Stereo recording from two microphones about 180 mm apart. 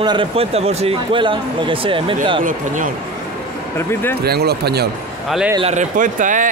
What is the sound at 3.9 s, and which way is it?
Speech, 10° left (ahead or behind).